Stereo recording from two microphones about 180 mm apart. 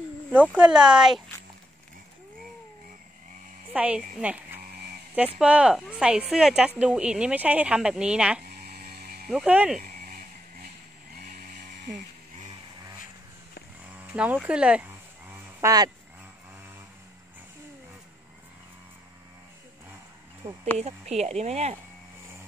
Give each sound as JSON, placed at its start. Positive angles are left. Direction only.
{"t": 0.3, "sound": "speech", "side_deg": -10}
{"t": 3.7, "sound": "speech", "side_deg": -5}
{"t": 8.5, "sound": "electric shaver", "side_deg": -60}
{"t": 9.3, "sound": "speech", "side_deg": -5}
{"t": 9.8, "sound": "a sound", "side_deg": -50}
{"t": 11.8, "sound": "a sound", "side_deg": -45}
{"t": 13.9, "sound": "speech", "side_deg": -10}
{"t": 15.6, "sound": "speech", "side_deg": -20}
{"t": 20.7, "sound": "speech", "side_deg": -35}